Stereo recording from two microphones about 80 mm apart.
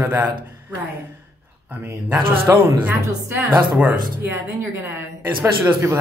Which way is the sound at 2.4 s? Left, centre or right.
Right.